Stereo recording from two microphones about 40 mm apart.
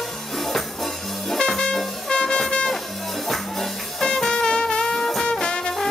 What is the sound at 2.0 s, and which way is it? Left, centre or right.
Music, centre.